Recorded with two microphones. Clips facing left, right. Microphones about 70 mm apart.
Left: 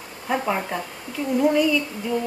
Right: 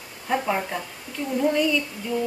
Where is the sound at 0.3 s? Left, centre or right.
Centre.